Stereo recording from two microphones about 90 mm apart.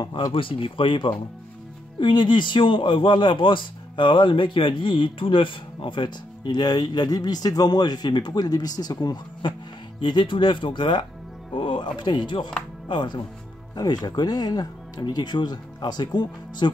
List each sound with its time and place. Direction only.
0.0 s a man's voice: 60° left (ahead or behind)
10.0 s a man's voice: 65° left (ahead or behind)